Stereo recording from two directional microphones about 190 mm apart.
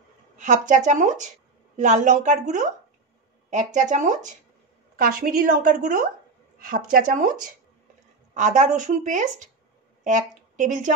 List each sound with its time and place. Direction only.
0.4 s a woman's voice: 40° right (ahead or behind)
8.4 s a woman's voice: 40° right (ahead or behind)